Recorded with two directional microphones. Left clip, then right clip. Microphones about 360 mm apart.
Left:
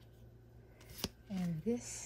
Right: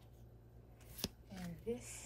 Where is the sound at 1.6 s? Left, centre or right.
Left.